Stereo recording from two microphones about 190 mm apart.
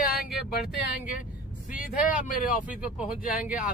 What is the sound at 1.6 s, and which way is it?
Speech, 40° left (ahead or behind).